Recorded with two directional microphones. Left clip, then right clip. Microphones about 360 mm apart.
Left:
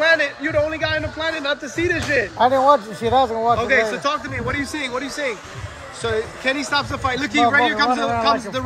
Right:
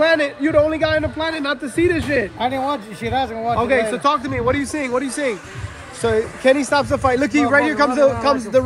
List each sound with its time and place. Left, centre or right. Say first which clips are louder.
0.0 s a sound: right 1 dB; centre
2.3 s a man's voice: left 7 dB; centre
3.5 s speech: even; centre